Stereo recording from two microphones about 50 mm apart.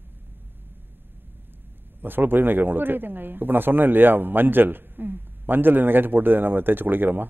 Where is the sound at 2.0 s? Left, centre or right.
Right.